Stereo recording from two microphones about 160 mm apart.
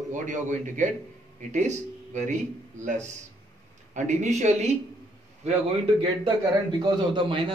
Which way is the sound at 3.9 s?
50° right (ahead or behind).